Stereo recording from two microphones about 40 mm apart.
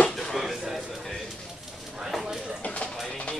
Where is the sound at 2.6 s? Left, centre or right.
Left.